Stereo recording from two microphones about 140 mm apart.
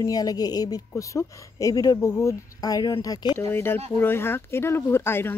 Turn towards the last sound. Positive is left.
turn(degrees=15)  # may be behind; listen again after turning